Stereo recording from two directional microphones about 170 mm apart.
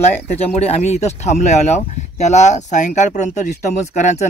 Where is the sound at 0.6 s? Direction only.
40° left (ahead or behind).